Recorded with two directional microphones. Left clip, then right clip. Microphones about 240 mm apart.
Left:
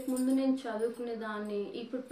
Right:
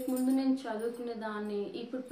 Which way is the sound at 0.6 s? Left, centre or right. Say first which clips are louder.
Left 2 dB; centre.